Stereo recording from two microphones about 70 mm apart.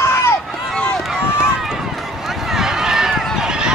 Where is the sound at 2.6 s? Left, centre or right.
Centre.